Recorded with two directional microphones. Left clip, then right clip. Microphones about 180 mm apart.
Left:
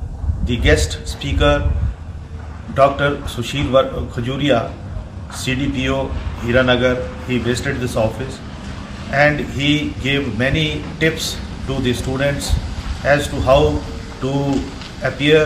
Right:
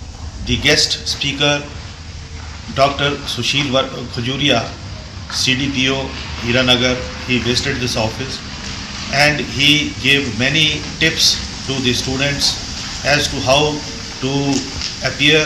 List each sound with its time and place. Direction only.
0.5 s a man's voice: 15° left (ahead or behind)
2.7 s a man's voice: 10° left (ahead or behind)